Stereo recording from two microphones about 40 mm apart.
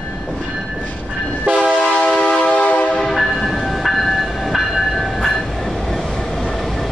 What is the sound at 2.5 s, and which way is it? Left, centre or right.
Train, left.